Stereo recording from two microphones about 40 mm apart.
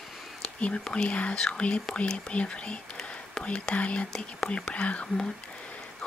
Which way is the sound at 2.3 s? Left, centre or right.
Left.